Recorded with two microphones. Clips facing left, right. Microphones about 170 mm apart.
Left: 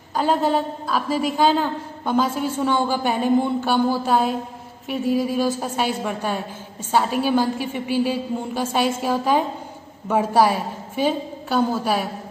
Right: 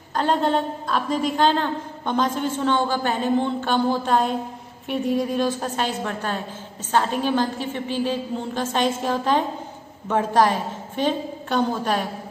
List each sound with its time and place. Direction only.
0.1 s a woman's voice: 5° left (ahead or behind)